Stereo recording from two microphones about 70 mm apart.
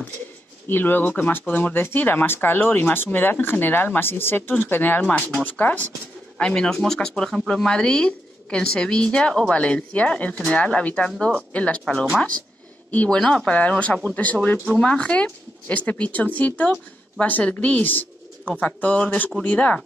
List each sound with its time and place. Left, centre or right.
0.7 s speech: left